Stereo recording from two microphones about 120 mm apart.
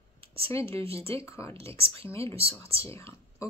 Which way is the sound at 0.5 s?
20° left (ahead or behind).